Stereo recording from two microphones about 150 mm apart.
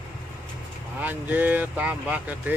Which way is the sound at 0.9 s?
10° right (ahead or behind).